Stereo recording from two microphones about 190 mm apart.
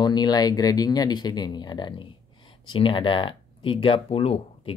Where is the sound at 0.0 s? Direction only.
20° left (ahead or behind).